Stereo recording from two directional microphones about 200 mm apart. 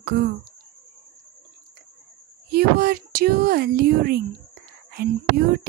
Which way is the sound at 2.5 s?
50° right (ahead or behind).